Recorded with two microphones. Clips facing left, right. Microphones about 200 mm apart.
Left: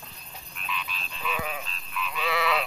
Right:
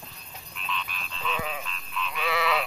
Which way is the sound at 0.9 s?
50° right (ahead or behind).